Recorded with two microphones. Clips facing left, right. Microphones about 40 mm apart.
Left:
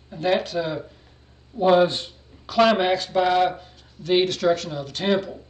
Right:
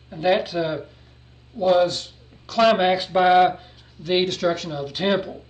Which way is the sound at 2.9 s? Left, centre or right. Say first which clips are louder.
Right 3 dB; centre.